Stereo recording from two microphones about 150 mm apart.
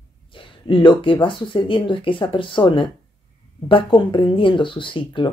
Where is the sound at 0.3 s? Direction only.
35° left (ahead or behind).